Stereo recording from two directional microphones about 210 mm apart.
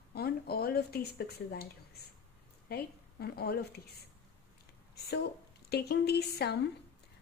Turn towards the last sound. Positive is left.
turn(degrees=50)  # may be behind; listen again after turning